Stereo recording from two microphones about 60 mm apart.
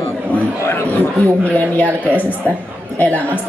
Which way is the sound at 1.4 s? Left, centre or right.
Left.